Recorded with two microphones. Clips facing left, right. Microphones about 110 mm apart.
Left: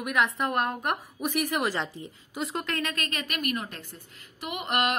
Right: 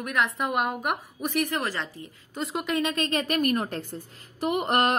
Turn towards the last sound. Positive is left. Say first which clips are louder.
# right 5 dB
turn(degrees=-40)  # may be behind; listen again after turning